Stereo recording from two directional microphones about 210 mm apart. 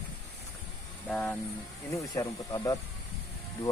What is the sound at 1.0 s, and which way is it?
Speech, 5° left (ahead or behind).